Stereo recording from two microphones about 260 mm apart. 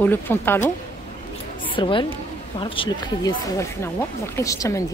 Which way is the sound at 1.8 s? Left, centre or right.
Centre.